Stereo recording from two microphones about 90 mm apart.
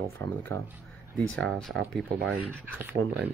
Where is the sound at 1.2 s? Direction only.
10° left (ahead or behind).